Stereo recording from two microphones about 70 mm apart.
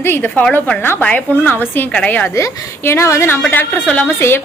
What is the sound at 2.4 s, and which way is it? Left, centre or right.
Speech, left.